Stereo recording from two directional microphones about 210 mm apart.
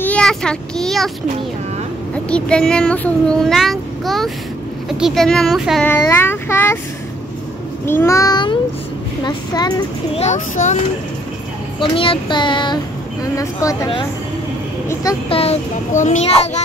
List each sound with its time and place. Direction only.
0.0 s a child's voice: 5° left (ahead or behind)
2.2 s a child's voice: 5° left (ahead or behind)
7.8 s speech: 10° left (ahead or behind); by 10.8 s 35° left (ahead or behind)
11.8 s speech: 25° left (ahead or behind)
15.2 s a child's voice: 30° left (ahead or behind)